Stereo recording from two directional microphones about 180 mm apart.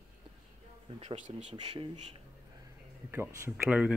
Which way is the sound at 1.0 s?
35° right (ahead or behind).